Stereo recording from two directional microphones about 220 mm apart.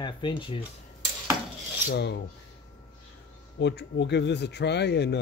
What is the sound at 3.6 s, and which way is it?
Speech, 50° left (ahead or behind).